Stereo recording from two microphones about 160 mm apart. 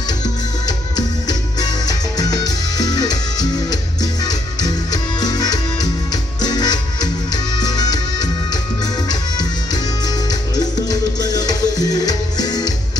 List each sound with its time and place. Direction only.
0.7 s music: 25° left (ahead or behind)